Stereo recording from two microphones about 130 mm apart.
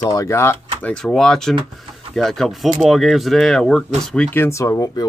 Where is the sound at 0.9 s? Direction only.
5° left (ahead or behind).